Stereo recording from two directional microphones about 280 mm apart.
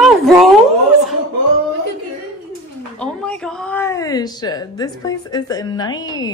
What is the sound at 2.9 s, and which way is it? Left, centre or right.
A woman's voice, centre.